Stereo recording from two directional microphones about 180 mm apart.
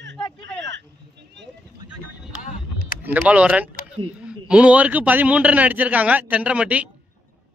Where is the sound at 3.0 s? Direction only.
10° right (ahead or behind).